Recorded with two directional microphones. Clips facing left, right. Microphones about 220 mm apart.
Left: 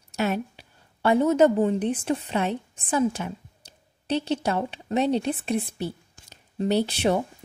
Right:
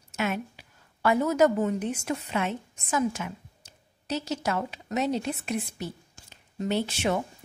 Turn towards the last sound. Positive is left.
turn(degrees=35)  # may be behind; listen again after turning